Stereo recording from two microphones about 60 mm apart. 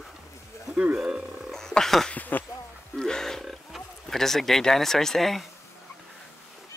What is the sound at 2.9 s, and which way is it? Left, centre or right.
Roaring cats, centre.